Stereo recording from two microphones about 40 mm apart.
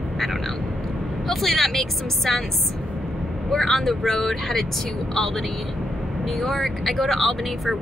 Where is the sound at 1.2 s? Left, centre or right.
Centre.